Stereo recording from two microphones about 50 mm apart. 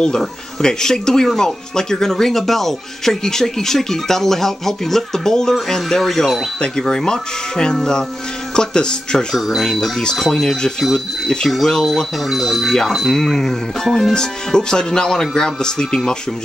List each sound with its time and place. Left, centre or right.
0.6 s speech: centre
12.3 s speech: centre
14.1 s speech: centre